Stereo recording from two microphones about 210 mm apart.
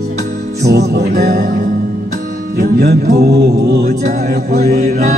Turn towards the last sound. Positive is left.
turn(degrees=-50)  # may be behind; listen again after turning